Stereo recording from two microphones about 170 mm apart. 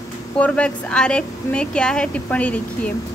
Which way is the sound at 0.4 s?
5° left (ahead or behind).